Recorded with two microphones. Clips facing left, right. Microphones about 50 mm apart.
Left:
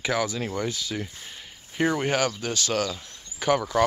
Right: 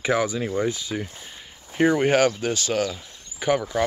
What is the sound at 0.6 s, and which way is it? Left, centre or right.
Speech, right.